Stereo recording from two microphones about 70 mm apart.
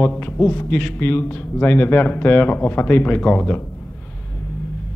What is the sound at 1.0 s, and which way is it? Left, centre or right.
A man's voice, left.